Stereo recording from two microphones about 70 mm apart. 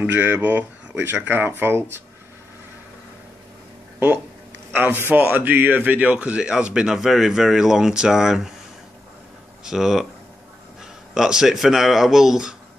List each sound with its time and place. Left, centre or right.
0.0 s speech: right
4.7 s speech: right; by 8.5 s centre
9.7 s speech: centre